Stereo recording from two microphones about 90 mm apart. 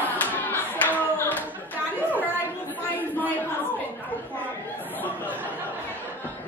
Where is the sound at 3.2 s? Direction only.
20° left (ahead or behind).